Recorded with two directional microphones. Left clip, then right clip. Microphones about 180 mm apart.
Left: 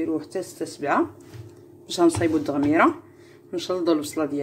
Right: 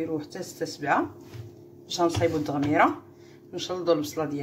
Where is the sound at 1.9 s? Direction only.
35° left (ahead or behind).